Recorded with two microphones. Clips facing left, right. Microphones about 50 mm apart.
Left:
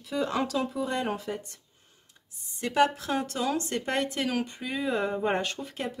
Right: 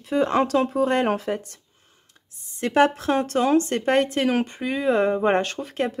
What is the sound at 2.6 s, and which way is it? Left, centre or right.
A woman's voice, right.